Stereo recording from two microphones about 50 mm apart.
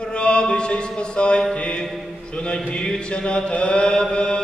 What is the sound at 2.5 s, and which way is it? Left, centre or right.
Chant, centre.